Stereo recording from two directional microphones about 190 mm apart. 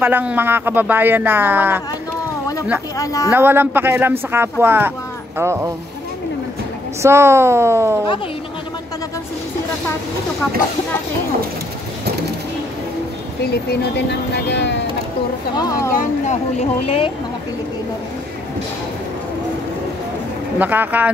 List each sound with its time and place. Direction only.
0.0 s speech: 10° right (ahead or behind)
3.0 s speech: 15° left (ahead or behind)
3.3 s speech: 10° right (ahead or behind)
7.0 s speech: 15° right (ahead or behind)
13.5 s speech: 60° left (ahead or behind)
15.5 s speech: 20° left (ahead or behind)
16.0 s speech: 40° left (ahead or behind)
20.5 s speech: 10° right (ahead or behind)